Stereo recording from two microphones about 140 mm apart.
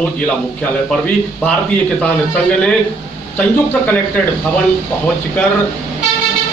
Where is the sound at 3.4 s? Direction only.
10° left (ahead or behind).